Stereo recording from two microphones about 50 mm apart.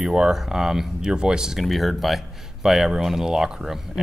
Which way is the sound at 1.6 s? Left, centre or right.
Centre.